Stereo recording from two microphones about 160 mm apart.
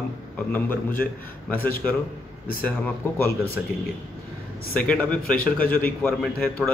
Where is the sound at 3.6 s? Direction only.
5° right (ahead or behind).